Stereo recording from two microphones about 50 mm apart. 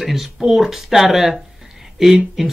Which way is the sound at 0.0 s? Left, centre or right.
Centre.